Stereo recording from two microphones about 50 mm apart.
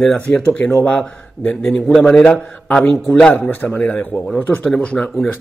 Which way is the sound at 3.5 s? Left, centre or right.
Left.